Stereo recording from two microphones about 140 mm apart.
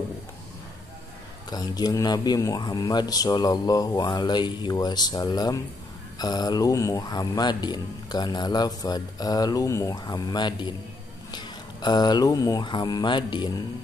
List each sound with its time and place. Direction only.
1.5 s speech: 30° left (ahead or behind)